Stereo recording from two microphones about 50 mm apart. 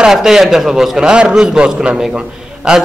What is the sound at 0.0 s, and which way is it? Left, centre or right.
A man's voice, centre.